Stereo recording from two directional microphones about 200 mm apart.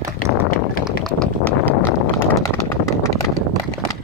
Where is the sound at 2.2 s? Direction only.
15° left (ahead or behind).